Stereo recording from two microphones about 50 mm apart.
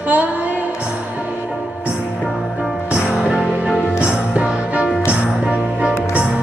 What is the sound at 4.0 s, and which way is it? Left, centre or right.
Music, right.